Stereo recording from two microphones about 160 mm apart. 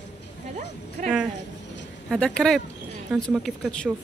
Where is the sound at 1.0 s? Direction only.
50° right (ahead or behind).